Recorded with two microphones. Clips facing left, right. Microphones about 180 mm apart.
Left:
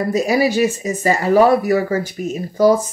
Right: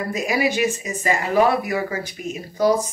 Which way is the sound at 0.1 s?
35° left (ahead or behind).